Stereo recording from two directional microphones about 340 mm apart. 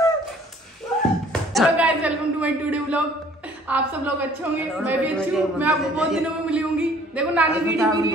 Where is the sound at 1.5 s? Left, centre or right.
Centre.